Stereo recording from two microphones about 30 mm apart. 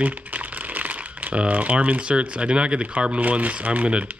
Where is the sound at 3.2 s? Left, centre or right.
Right.